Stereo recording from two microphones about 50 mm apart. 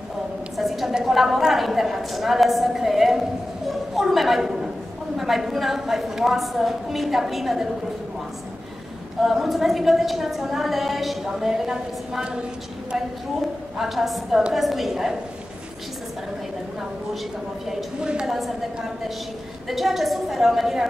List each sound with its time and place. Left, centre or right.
0.6 s a sound: centre
0.9 s a woman's voice: centre
9.2 s a woman's voice: centre
13.7 s a woman's voice: centre
18.0 s a woman's voice: centre
19.7 s a woman's voice: centre